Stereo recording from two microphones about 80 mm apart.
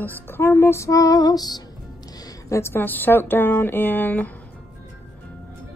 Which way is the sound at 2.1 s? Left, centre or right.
Left.